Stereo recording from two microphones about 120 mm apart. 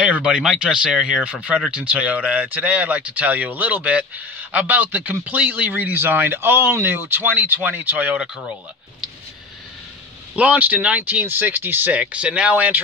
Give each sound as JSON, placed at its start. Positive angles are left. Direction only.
{"t": 0.0, "sound": "speech", "side_deg": -10}
{"t": 10.3, "sound": "speech", "side_deg": -10}